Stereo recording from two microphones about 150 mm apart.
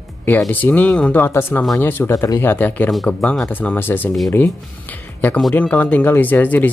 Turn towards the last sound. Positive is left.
turn(degrees=10)  # may be behind; listen again after turning